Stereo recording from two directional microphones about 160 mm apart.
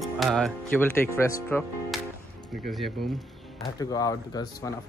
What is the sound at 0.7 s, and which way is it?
Speech, 15° left (ahead or behind).